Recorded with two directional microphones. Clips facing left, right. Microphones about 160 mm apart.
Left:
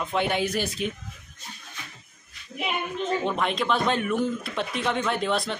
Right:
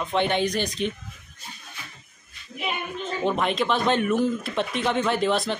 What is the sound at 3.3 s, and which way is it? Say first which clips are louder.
Speech: right 6 dB; centre (ahead or behind).